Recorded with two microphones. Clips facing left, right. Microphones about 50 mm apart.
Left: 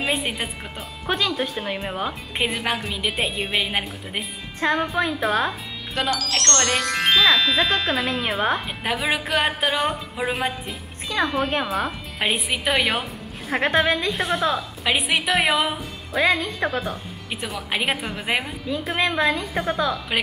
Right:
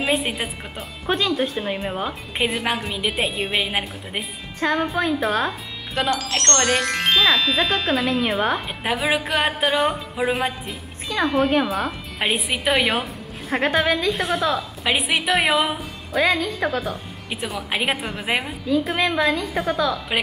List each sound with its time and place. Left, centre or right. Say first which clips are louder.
0.0 s a woman's voice: right 2 dB; centre
4.6 s speech: even; centre
4.8 s speech: right 1 dB; centre
6.0 s speech: right 1 dB; right
7.2 s a woman's voice: even; centre